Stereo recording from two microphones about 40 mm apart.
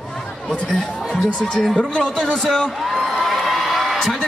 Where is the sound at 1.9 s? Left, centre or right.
Centre.